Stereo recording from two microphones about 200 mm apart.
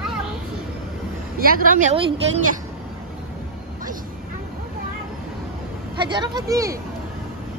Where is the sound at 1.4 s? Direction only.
45° right (ahead or behind).